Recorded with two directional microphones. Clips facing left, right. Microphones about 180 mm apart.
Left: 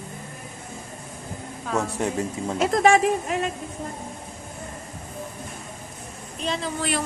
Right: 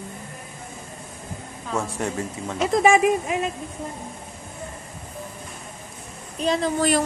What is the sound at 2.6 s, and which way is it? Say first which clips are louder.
Speech: right 1 dB; centre (ahead or behind).